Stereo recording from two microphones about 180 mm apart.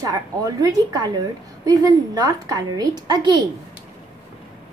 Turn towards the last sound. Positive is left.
turn(degrees=-25)  # may be behind; listen again after turning